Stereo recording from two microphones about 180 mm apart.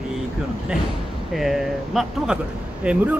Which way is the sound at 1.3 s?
Centre (ahead or behind).